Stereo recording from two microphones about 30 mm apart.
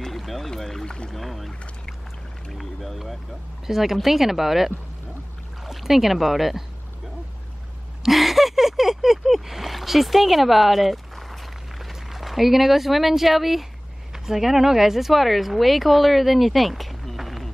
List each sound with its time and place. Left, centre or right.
0.1 s boat: centre
0.6 s rowboat: centre
0.8 s speech: left
1.1 s speech: centre
3.6 s speech: centre
8.0 s a sound: centre
14.1 s speech: centre